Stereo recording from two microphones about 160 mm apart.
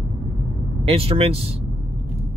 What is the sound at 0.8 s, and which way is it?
Speech, 35° right (ahead or behind).